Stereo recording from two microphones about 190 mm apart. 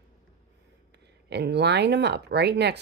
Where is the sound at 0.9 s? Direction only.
65° right (ahead or behind).